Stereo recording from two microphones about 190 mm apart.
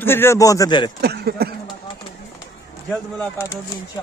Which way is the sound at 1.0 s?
55° right (ahead or behind).